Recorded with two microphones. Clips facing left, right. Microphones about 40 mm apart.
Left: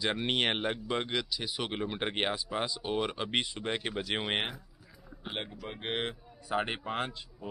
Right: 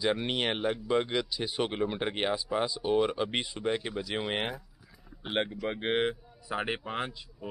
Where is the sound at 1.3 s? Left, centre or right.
Right.